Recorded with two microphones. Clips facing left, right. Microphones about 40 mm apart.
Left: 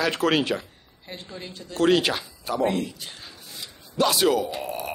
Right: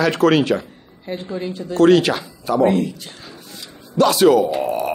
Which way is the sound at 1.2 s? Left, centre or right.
Centre.